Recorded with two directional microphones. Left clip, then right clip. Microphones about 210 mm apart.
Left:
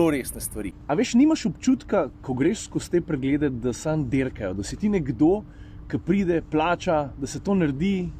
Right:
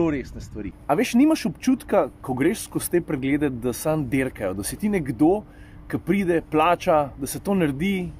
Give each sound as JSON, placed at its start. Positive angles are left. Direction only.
{"t": 0.0, "sound": "speech", "side_deg": 20}
{"t": 0.8, "sound": "speech", "side_deg": -5}